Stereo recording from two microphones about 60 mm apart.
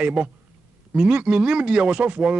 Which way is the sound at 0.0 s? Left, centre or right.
Centre.